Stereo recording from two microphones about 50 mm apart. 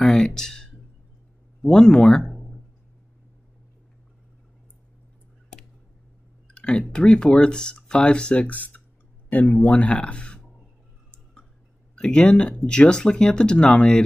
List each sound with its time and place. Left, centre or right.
0.0 s a sound: centre
1.6 s speech: centre
6.5 s speech: left
11.9 s speech: centre